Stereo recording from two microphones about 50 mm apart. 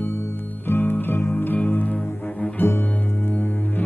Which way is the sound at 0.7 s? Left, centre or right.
Left.